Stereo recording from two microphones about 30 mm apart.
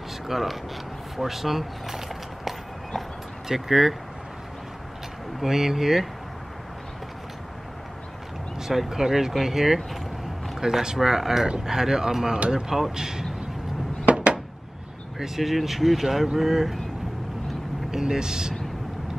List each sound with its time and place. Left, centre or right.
0.3 s speech: centre
5.4 s speech: centre
8.5 s a man's voice: centre
14.1 s a sound: right
15.1 s speech: centre
18.0 s speech: right